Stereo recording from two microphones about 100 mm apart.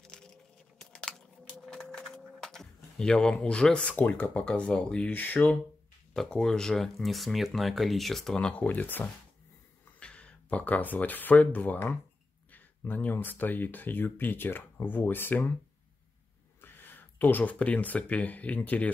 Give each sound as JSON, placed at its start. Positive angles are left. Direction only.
{"t": 0.0, "sound": "a sound", "side_deg": 10}
{"t": 3.9, "sound": "speech", "side_deg": 20}
{"t": 16.6, "sound": "speech", "side_deg": 20}